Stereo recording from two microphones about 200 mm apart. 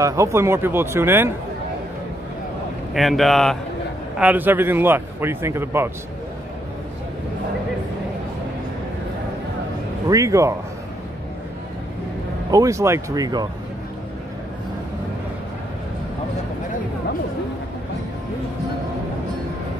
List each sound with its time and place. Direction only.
0.0 s a man's voice: 15° right (ahead or behind)
2.9 s a man's voice: centre (ahead or behind)
10.0 s a man's voice: 15° right (ahead or behind)
12.4 s a man's voice: 15° right (ahead or behind)